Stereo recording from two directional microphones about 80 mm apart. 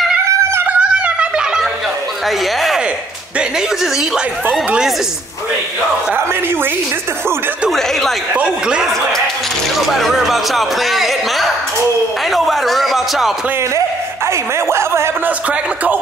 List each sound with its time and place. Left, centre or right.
0.3 s music: right
0.7 s a sound: centre
2.2 s speech: centre
3.8 s speech: centre
8.3 s speech: centre
9.8 s speech: centre
13.7 s a man's voice: right